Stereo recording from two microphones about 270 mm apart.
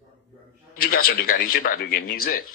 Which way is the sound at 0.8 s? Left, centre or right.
Left.